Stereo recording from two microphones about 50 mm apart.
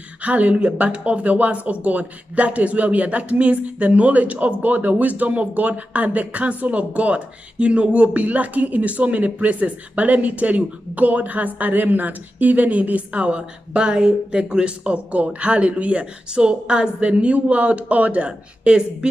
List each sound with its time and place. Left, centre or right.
0.2 s speech: right